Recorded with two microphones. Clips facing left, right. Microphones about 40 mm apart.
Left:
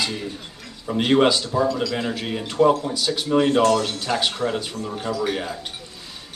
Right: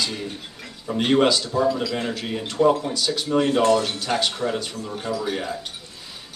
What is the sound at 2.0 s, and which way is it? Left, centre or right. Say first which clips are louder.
Speech: left 1 dB; centre.